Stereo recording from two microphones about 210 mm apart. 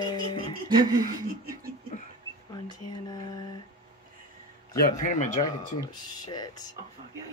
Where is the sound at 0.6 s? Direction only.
20° right (ahead or behind).